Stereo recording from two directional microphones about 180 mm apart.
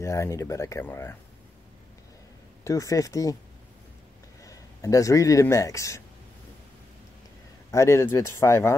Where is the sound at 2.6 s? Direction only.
15° left (ahead or behind).